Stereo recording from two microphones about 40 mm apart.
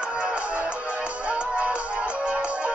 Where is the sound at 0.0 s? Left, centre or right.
Right.